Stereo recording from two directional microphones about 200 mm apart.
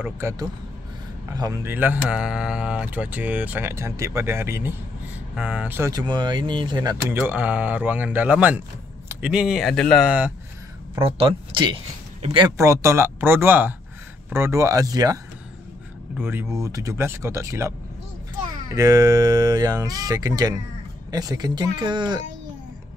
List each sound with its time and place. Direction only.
0.0 s speech: 15° right (ahead or behind)
7.2 s speech: 10° right (ahead or behind)
11.1 s speech: 30° right (ahead or behind)
16.2 s speech: 10° right (ahead or behind)
18.8 s speech: 15° right (ahead or behind)